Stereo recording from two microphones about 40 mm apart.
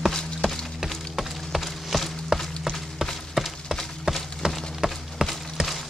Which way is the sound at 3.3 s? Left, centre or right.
Centre.